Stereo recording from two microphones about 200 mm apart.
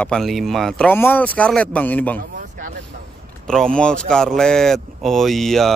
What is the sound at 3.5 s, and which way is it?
A man's voice, 5° left (ahead or behind).